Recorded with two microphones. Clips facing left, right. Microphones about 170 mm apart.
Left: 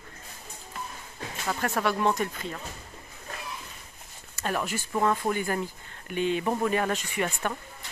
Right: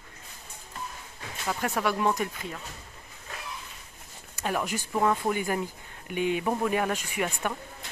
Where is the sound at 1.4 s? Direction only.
5° right (ahead or behind).